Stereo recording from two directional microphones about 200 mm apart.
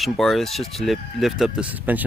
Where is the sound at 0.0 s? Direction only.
Centre (ahead or behind).